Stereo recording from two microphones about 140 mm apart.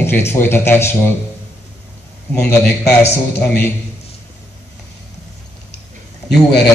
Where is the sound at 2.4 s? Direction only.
15° left (ahead or behind).